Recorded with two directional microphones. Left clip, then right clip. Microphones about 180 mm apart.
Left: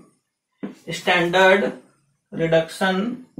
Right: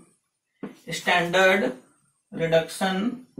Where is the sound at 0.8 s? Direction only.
Centre (ahead or behind).